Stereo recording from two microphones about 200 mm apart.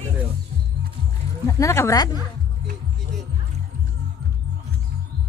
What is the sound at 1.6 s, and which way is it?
Speech, 15° left (ahead or behind).